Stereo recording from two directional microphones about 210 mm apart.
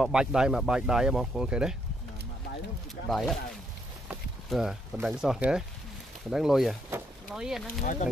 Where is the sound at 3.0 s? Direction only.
Centre (ahead or behind).